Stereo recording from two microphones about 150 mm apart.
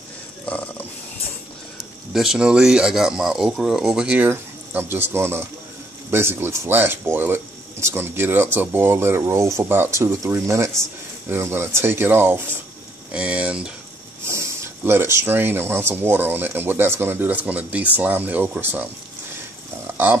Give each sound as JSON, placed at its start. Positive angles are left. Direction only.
{"t": 0.5, "sound": "a sound", "side_deg": 10}
{"t": 2.1, "sound": "speech", "side_deg": -5}
{"t": 14.2, "sound": "speech", "side_deg": -20}